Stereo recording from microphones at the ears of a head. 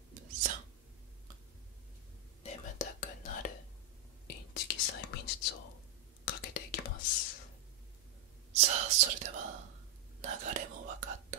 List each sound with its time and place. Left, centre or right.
0.1 s whispering: right
2.8 s whispering: left
8.5 s whispering: right